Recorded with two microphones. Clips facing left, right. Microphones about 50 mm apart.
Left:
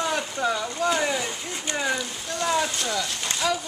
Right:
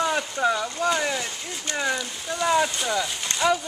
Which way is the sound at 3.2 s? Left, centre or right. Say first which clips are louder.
Right 4 dB; centre.